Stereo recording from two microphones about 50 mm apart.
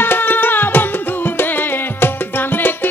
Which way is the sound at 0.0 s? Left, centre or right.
Left.